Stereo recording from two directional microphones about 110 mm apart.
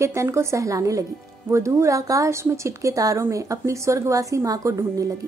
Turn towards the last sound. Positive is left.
turn(degrees=-30)  # may be behind; listen again after turning